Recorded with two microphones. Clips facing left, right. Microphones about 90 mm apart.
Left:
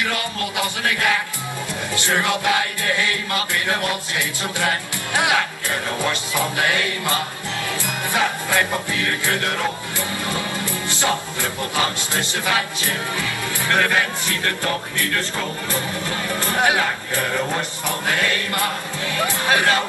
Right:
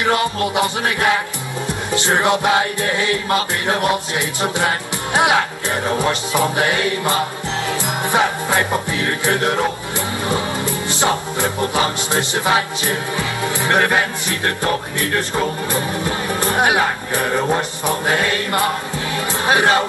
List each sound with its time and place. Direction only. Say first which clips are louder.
0.0 s music: right 7 dB; 25° right (ahead or behind)
19.1 s speech: right 2 dB; 20° right (ahead or behind)